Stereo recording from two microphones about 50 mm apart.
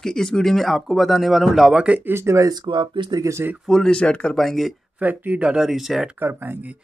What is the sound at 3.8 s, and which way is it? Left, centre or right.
Speech, left.